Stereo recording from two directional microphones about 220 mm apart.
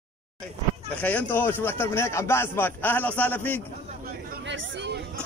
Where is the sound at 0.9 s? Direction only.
5° left (ahead or behind).